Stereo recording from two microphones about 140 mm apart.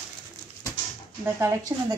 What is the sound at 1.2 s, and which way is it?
Speech, 20° right (ahead or behind).